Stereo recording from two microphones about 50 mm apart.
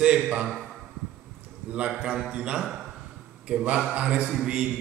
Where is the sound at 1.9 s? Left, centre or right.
Centre.